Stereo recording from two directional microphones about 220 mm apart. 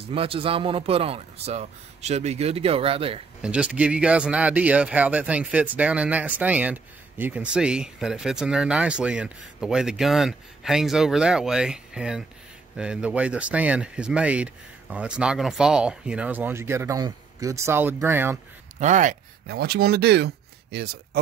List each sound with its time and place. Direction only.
0.1 s speech: 25° right (ahead or behind)
3.4 s speech: 5° right (ahead or behind)
18.8 s speech: 35° right (ahead or behind)